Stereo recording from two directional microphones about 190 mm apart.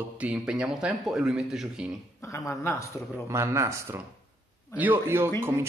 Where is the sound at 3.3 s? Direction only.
15° right (ahead or behind).